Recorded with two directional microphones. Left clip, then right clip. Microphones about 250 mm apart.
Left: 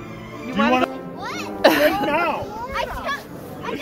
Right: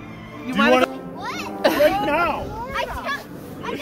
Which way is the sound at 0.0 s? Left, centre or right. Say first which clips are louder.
Left 2 dB; left.